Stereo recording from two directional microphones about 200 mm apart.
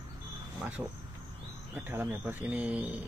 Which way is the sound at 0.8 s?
15° right (ahead or behind).